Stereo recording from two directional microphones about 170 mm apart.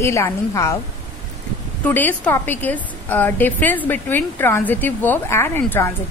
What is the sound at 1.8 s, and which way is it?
A woman's voice, 10° left (ahead or behind).